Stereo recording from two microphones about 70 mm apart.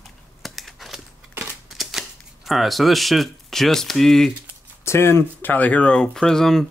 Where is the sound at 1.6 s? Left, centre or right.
Centre.